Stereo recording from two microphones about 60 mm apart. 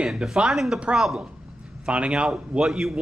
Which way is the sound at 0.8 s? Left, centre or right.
Centre.